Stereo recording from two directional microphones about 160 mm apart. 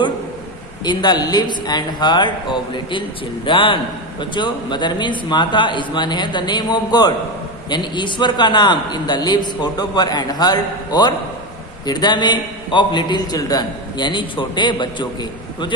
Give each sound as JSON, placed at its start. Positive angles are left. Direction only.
{"t": 0.8, "sound": "a man's voice", "side_deg": 25}